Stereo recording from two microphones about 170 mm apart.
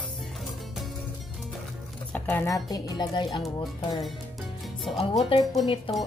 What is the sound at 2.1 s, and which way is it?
Speech, 10° left (ahead or behind).